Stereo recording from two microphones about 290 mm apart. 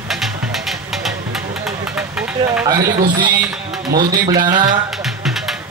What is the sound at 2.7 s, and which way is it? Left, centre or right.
Speech, right.